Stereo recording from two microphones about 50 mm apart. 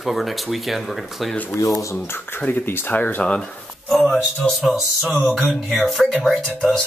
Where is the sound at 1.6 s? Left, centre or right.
Left.